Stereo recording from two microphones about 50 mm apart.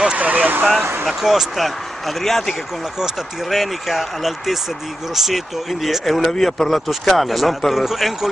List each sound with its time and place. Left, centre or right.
0.2 s speech: right
1.0 s speech: centre
2.8 s speech: centre